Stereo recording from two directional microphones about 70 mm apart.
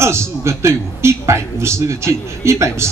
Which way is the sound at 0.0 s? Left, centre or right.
Right.